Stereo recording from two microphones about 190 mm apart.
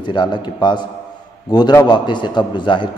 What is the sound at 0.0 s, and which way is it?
A man's voice, 25° left (ahead or behind).